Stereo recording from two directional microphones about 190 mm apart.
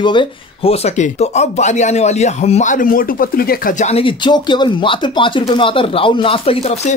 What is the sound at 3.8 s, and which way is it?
Speech, 30° left (ahead or behind).